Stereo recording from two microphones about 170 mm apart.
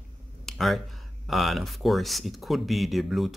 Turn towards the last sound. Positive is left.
turn(degrees=0)  # may be behind; listen again after turning